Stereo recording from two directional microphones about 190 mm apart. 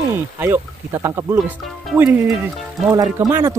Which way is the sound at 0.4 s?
15° right (ahead or behind).